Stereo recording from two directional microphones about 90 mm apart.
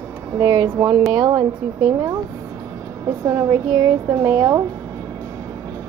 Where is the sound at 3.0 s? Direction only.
35° right (ahead or behind).